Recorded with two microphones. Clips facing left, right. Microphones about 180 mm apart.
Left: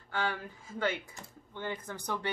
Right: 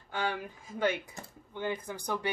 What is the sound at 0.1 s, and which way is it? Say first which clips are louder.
Speech: right 1 dB; 15° right (ahead or behind).